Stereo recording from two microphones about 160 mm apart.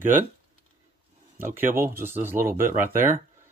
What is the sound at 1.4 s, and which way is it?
Speech, 15° right (ahead or behind).